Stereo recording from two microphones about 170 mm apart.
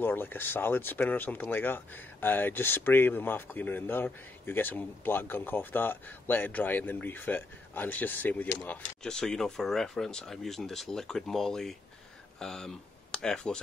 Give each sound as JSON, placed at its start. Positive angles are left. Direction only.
{"t": 0.0, "sound": "speech", "side_deg": 10}